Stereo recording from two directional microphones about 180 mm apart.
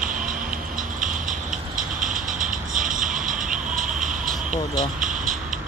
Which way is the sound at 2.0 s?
50° right (ahead or behind).